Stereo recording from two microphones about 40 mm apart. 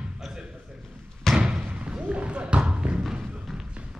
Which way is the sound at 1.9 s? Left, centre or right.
Right.